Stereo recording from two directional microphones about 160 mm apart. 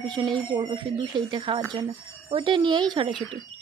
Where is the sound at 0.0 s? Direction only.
30° right (ahead or behind).